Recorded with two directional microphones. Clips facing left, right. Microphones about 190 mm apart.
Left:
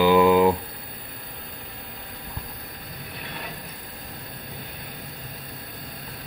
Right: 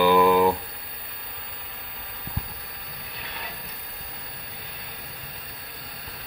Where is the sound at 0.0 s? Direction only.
15° left (ahead or behind).